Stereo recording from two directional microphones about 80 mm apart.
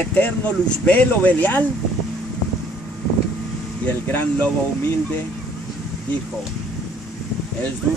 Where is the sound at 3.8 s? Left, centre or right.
Left.